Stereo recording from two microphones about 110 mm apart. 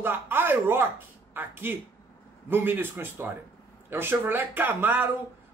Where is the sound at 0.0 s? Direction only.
20° right (ahead or behind).